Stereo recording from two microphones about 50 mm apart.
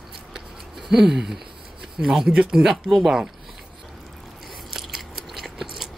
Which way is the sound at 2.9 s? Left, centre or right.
Centre.